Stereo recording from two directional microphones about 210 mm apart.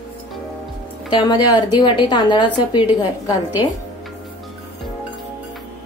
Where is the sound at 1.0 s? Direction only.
20° left (ahead or behind).